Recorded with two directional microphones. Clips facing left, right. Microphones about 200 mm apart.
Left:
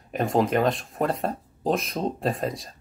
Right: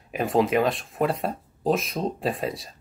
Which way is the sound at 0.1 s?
Centre (ahead or behind).